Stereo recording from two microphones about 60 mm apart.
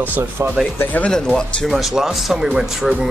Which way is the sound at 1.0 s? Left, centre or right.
Centre.